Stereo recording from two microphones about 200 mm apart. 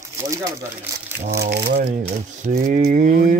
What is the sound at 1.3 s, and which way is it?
Speech, 55° right (ahead or behind).